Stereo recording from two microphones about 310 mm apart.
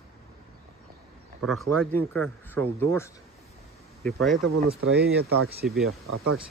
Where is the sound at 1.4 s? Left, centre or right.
Centre.